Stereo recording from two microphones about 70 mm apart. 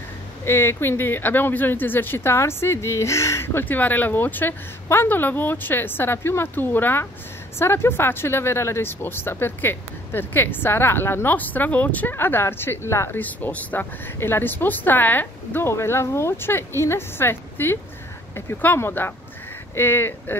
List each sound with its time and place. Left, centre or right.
0.5 s speech: left
13.2 s speech: left